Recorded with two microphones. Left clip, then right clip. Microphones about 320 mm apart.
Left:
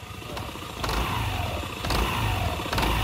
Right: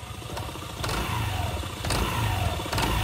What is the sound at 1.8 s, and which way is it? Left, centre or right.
Vehicle, centre.